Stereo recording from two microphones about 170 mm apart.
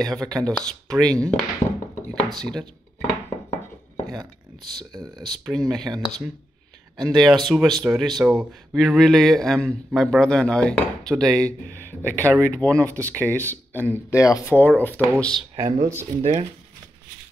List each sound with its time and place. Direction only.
0.0 s speech: 5° left (ahead or behind)
2.4 s speech: 5° left (ahead or behind)
4.9 s speech: 20° right (ahead or behind)
5.3 s speech: centre (ahead or behind)
15.5 s speech: 20° right (ahead or behind)
16.2 s speech: 35° right (ahead or behind)